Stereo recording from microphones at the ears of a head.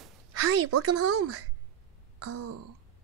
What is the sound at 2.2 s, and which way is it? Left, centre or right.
Throat clearing, right.